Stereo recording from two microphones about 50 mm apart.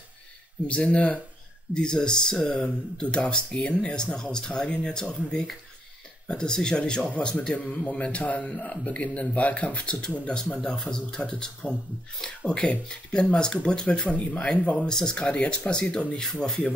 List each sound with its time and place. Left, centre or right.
0.7 s speech: left
1.7 s speech: centre
6.2 s speech: centre
14.1 s speech: left